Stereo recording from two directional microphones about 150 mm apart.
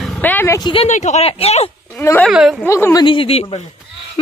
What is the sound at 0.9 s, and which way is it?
Speech, 50° left (ahead or behind).